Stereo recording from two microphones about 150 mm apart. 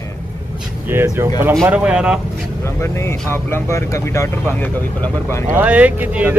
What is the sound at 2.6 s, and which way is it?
Speech, 20° left (ahead or behind).